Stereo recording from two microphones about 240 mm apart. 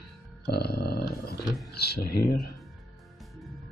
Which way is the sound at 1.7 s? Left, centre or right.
Left.